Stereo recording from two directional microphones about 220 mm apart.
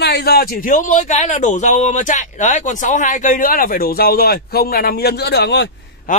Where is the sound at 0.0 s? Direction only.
45° left (ahead or behind).